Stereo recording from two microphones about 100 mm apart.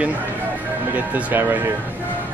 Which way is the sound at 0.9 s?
15° right (ahead or behind).